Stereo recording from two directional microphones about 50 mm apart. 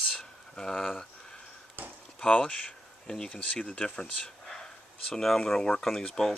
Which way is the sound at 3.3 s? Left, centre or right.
Left.